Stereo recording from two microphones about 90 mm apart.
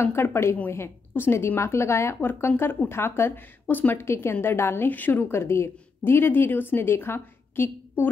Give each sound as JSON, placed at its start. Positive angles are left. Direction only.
{"t": 0.0, "sound": "speech", "side_deg": 30}